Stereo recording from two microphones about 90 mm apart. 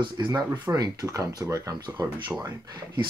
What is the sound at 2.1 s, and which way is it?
Speech, 60° right (ahead or behind).